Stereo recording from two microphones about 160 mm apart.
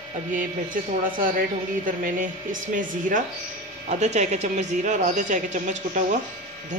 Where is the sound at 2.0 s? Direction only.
55° right (ahead or behind).